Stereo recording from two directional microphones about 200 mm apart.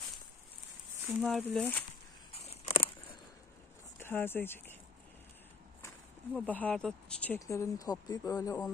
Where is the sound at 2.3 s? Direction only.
30° left (ahead or behind).